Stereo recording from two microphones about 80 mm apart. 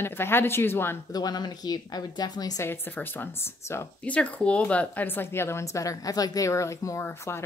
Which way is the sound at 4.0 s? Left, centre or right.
Centre.